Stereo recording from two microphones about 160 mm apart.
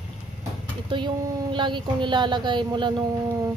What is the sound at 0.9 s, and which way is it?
Speech, 30° right (ahead or behind).